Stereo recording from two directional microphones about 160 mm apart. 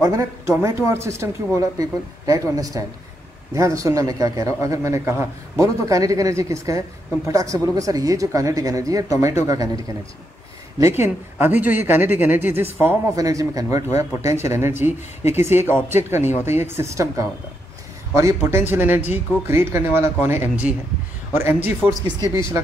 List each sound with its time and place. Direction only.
0.0 s speech: 20° right (ahead or behind)
10.8 s speech: 15° right (ahead or behind)
22.0 s speech: 20° left (ahead or behind)